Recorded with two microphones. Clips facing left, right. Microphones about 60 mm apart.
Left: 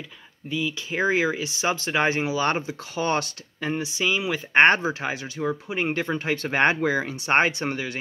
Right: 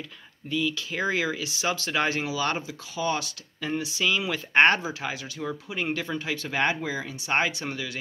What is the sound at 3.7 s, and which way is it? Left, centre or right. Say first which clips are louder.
Speech: left 1 dB; left.